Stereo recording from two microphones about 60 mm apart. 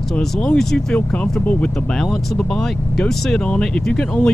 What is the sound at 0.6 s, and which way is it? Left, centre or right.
Speech, centre.